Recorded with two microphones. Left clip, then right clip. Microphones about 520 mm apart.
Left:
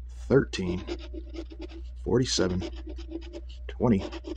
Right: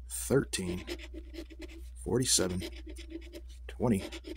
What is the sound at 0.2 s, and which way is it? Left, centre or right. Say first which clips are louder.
Speech: left 6 dB; right.